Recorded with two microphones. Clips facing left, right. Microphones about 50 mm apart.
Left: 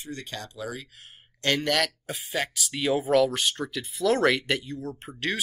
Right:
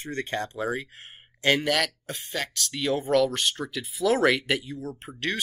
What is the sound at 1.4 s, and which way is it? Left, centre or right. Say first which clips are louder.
Speech: right 3 dB; centre.